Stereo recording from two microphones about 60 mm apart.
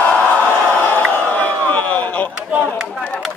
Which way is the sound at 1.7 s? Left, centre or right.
Left.